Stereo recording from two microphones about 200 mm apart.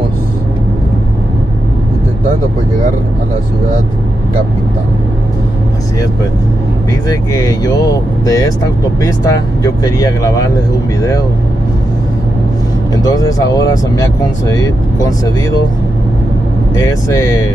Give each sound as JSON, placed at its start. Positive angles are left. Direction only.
{"t": 7.1, "sound": "speech", "side_deg": 15}
{"t": 12.9, "sound": "speech", "side_deg": 20}
{"t": 16.7, "sound": "speech", "side_deg": 15}